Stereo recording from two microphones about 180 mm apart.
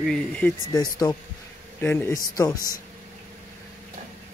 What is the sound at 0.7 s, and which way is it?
Speech, 20° left (ahead or behind).